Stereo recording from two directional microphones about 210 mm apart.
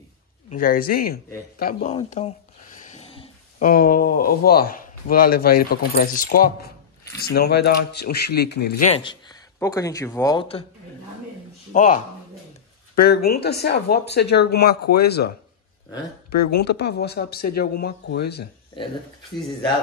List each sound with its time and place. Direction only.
0.5 s speech: 40° left (ahead or behind)
1.9 s a sound: 30° left (ahead or behind)
3.6 s speech: 45° left (ahead or behind)
8.8 s speech: 25° left (ahead or behind)
11.7 s speech: 35° left (ahead or behind)
12.9 s speech: 45° left (ahead or behind)